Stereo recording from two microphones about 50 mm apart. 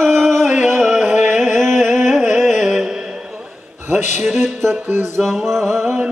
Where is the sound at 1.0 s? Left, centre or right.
Right.